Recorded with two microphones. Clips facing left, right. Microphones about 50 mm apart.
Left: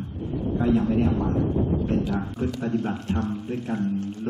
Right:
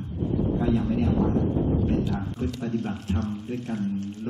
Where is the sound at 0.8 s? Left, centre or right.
Centre.